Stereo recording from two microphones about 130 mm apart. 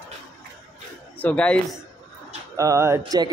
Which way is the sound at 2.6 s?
25° right (ahead or behind).